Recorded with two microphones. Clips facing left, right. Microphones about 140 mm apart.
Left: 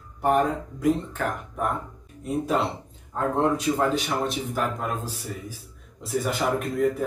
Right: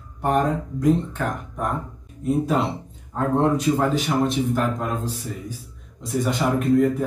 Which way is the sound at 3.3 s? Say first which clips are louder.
Right 4 dB; centre (ahead or behind).